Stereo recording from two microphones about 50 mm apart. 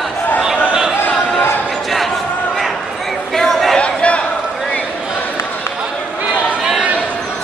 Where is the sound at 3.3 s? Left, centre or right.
Centre.